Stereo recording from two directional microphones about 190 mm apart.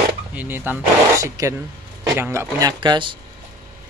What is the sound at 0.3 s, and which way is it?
Speech, 10° right (ahead or behind).